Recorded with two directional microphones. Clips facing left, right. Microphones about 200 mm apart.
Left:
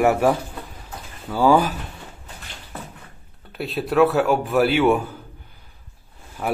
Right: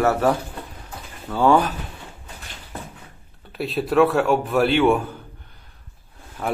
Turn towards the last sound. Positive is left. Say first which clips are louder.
# even
turn(degrees=5)  # may be behind; listen again after turning